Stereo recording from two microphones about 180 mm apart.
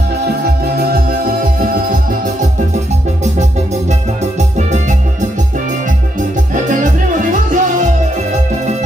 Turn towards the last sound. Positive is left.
turn(degrees=-45)  # may be behind; listen again after turning